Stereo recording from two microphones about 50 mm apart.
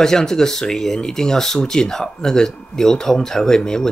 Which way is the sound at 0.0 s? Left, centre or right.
Centre.